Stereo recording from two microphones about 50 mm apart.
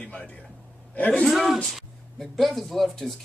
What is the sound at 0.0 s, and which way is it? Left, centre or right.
A man's voice, left.